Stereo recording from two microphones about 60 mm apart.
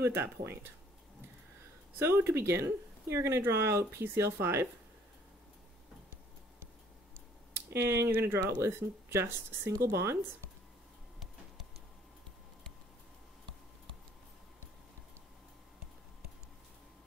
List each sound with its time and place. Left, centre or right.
0.0 s speech: right
2.0 s speech: right
7.5 s speech: right
9.7 s speech: right